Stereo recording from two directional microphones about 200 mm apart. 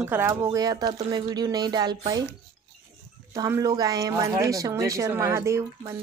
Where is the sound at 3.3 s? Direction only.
15° right (ahead or behind).